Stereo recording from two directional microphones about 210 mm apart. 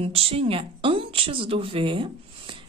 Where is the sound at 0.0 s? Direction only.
25° right (ahead or behind).